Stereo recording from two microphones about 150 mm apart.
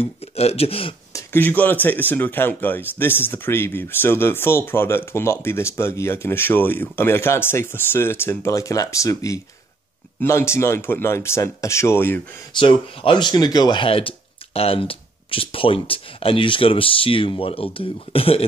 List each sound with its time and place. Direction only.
0.0 s speech: 45° left (ahead or behind)
1.1 s speech: 15° left (ahead or behind)
13.0 s speech: 30° left (ahead or behind)